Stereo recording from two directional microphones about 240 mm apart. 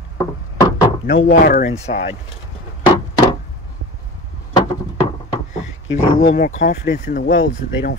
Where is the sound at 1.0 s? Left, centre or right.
Left.